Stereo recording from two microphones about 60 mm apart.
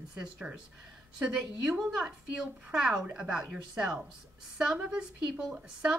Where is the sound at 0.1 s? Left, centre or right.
Centre.